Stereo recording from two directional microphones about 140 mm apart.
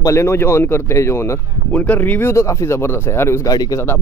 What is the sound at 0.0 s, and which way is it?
Speech, 20° left (ahead or behind).